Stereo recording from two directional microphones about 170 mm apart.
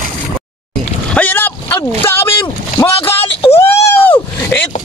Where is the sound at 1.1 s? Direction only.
10° left (ahead or behind).